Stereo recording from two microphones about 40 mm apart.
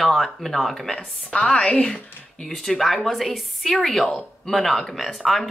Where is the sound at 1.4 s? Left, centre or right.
Left.